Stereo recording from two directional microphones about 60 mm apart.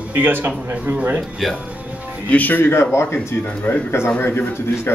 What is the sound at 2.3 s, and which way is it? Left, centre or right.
Speech, left.